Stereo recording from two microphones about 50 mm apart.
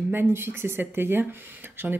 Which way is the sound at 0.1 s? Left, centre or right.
Right.